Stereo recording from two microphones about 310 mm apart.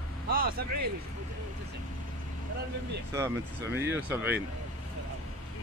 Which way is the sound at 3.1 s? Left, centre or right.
Centre.